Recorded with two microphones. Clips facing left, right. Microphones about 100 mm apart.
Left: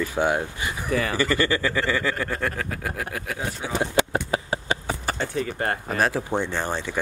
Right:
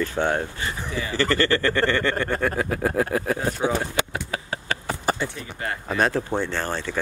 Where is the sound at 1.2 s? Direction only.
10° left (ahead or behind).